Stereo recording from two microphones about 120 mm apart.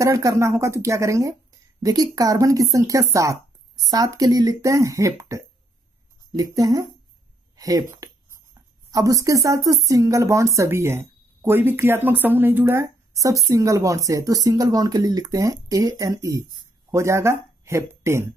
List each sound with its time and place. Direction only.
0.0 s speech: 25° right (ahead or behind)
7.5 s a sound: 30° right (ahead or behind)
8.9 s speech: 30° right (ahead or behind)